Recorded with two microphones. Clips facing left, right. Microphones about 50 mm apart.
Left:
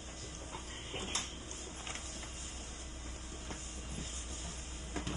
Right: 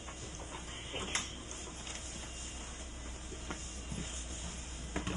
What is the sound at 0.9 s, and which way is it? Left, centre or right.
Printer, right.